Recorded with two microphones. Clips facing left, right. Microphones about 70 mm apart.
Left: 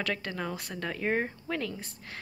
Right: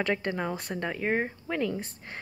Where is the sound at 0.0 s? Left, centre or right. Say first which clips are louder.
Right 4 dB; right.